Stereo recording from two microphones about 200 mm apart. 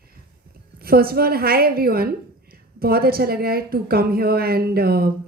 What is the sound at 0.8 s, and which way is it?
Speech, 50° right (ahead or behind).